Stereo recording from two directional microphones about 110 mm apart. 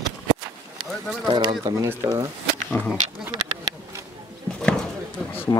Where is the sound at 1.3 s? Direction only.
40° right (ahead or behind).